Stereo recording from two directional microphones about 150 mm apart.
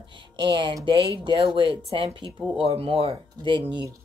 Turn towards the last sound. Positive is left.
turn(degrees=-30)  # may be behind; listen again after turning